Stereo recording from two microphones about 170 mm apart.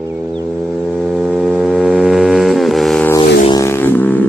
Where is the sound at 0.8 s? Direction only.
5° right (ahead or behind).